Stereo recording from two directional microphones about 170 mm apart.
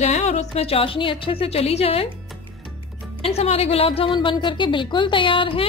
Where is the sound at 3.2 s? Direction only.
35° left (ahead or behind).